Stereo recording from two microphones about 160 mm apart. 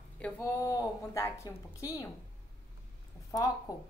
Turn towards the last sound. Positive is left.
turn(degrees=25)  # may be behind; listen again after turning